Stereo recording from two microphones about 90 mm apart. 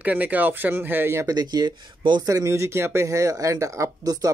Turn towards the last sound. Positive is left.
turn(degrees=-40)  # may be behind; listen again after turning